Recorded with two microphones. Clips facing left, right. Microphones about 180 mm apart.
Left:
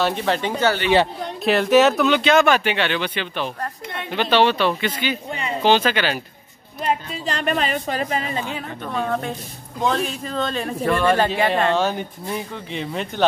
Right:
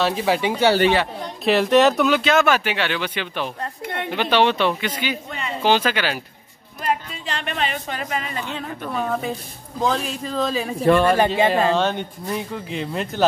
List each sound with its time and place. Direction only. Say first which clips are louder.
0.0 s speech: right 1 dB; 5° right (ahead or behind)
1.4 s speech: even; centre (ahead or behind)
3.8 s a woman's voice: right 4 dB; 60° right (ahead or behind)
4.1 s speech: left 1 dB; 10° right (ahead or behind)
7.2 s speech: left 4 dB; 40° left (ahead or behind)
8.4 s speech: left 2 dB; 10° left (ahead or behind)
8.8 s speech: even; 5° right (ahead or behind)